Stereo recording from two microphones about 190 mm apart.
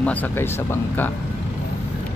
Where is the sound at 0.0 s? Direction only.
10° left (ahead or behind).